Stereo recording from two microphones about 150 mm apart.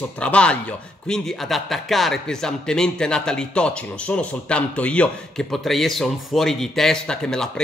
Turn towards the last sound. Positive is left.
turn(degrees=5)  # may be behind; listen again after turning